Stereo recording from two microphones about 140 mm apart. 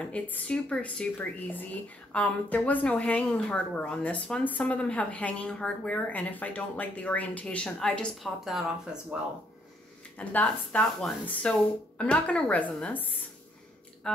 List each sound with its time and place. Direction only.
0.0 s speech: 10° left (ahead or behind)
10.1 s speech: 10° left (ahead or behind)
14.0 s speech: 5° left (ahead or behind)